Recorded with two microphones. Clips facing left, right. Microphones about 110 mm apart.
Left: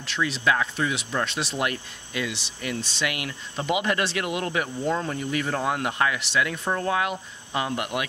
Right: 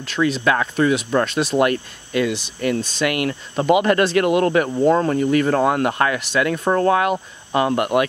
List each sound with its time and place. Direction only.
0.0 s speech: 45° right (ahead or behind)
4.6 s cricket: 80° right
4.9 s speech: 55° right (ahead or behind)